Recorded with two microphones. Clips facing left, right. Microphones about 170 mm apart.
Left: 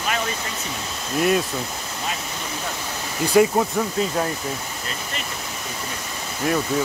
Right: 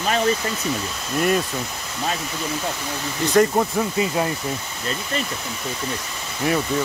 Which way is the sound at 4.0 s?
10° right (ahead or behind).